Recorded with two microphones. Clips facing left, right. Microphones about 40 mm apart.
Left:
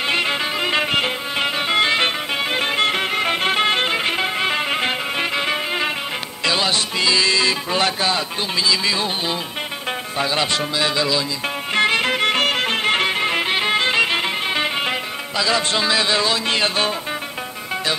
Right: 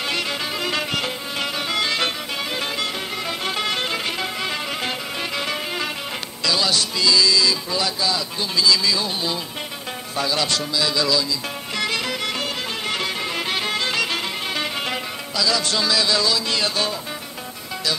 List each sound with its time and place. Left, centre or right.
0.1 s music: left
8.5 s speech: left
11.7 s music: left